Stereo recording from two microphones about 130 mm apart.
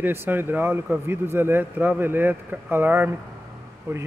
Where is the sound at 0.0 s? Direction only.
15° right (ahead or behind).